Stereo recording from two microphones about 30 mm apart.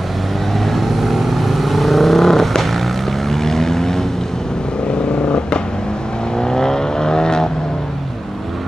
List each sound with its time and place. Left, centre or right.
0.7 s vehicle: centre
6.3 s vehicle: centre